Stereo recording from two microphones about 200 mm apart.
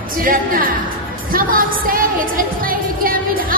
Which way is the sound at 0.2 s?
45° right (ahead or behind).